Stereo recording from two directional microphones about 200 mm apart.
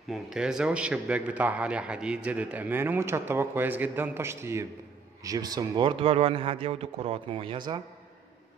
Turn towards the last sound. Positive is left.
turn(degrees=-25)  # may be behind; listen again after turning